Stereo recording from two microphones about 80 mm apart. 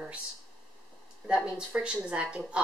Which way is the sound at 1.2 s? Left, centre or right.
Centre.